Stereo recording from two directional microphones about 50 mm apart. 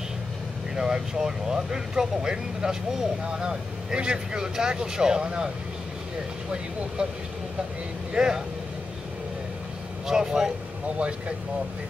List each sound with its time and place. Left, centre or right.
0.7 s speech: centre
7.0 s speech: right
10.0 s speech: centre